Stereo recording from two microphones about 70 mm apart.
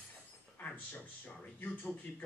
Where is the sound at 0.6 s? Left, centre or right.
Left.